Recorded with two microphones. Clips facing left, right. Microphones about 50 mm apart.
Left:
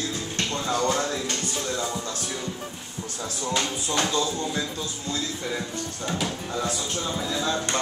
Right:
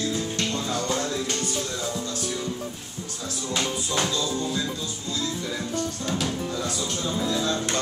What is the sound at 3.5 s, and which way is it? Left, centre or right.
Speech, centre.